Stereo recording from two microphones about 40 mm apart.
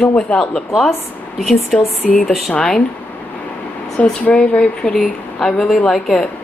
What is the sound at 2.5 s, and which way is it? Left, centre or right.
Speech, left.